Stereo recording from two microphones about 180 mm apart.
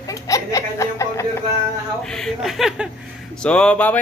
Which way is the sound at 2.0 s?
5° left (ahead or behind).